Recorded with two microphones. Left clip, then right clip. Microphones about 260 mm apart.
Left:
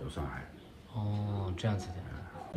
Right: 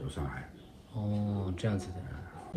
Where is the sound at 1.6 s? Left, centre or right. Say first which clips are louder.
Right 2 dB; left.